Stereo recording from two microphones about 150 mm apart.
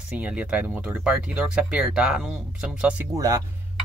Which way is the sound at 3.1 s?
20° right (ahead or behind).